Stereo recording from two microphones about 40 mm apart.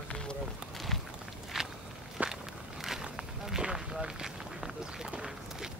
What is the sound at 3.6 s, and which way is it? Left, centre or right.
Speech, centre.